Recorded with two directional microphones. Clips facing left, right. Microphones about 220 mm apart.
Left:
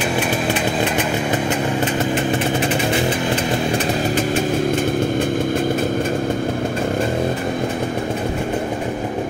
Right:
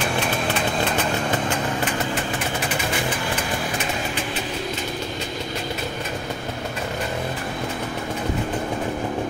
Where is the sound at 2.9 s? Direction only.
25° left (ahead or behind); by 7.0 s 50° left (ahead or behind).